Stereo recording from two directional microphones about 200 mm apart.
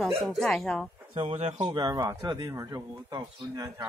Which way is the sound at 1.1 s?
30° right (ahead or behind).